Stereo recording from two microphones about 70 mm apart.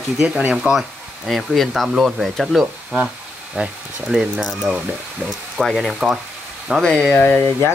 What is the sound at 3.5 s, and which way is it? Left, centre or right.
Speech, centre.